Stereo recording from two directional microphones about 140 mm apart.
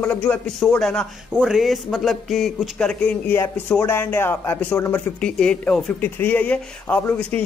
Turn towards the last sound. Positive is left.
turn(degrees=10)  # may be behind; listen again after turning